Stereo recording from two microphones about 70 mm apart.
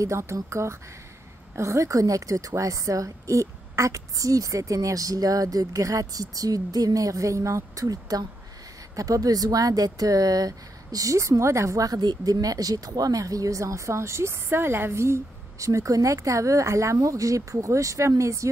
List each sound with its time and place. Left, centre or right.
0.0 s a woman's voice: right